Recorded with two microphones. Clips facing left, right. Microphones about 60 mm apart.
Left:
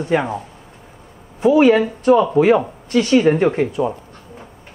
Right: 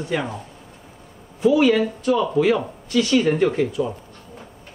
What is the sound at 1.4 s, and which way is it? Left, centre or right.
Speech, left.